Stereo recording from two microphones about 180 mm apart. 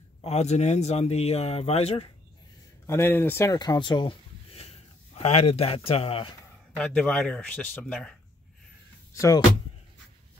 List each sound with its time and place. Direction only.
0.2 s a man's voice: 40° left (ahead or behind)
2.9 s speech: 10° left (ahead or behind); by 6.3 s 30° left (ahead or behind)
6.8 s speech: 5° left (ahead or behind)
9.1 s speech: 20° left (ahead or behind)